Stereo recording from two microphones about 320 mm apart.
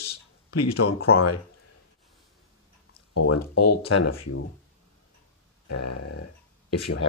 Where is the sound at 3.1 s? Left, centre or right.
Left.